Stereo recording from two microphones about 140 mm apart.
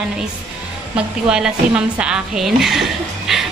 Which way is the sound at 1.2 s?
5° right (ahead or behind).